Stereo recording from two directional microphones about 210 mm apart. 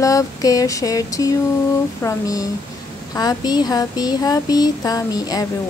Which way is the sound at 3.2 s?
20° left (ahead or behind).